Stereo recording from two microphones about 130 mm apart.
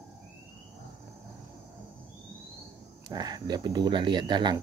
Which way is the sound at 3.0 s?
30° right (ahead or behind).